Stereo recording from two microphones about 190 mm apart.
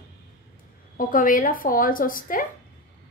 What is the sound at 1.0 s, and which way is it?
A woman's voice, 45° left (ahead or behind).